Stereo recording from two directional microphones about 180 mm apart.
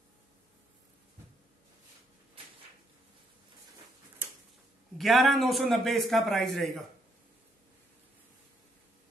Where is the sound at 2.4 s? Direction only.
30° right (ahead or behind).